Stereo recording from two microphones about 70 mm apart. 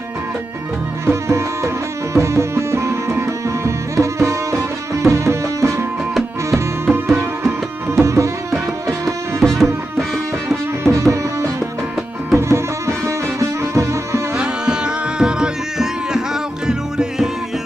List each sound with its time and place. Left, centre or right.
1.0 s music: right
8.0 s music: right
9.4 s music: centre
10.8 s music: right
14.3 s music: centre